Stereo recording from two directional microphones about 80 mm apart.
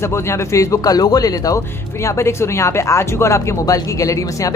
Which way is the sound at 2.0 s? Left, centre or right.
Left.